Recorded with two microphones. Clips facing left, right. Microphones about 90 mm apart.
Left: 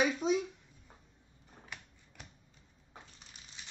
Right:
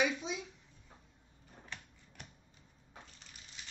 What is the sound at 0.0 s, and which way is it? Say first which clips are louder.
Speech: left 4 dB; 45° left (ahead or behind).